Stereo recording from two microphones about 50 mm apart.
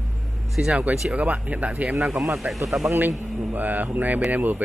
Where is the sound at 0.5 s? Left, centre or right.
Centre.